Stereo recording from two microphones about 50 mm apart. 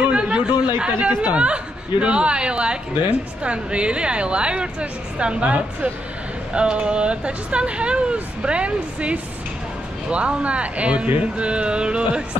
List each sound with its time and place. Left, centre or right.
0.0 s chatter: right
0.9 s speech: right
1.3 s speech: right